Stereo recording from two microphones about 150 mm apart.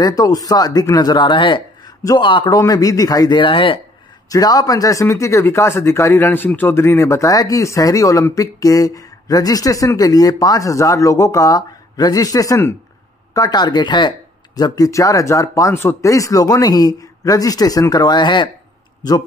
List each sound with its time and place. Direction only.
0.0 s a man's voice: 25° left (ahead or behind)
4.3 s speech: 25° left (ahead or behind)